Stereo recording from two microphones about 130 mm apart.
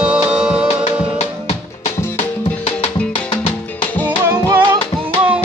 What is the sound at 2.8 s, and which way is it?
Music, 45° left (ahead or behind).